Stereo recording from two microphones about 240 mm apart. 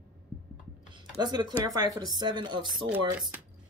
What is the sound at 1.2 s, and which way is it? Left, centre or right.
Speech, centre.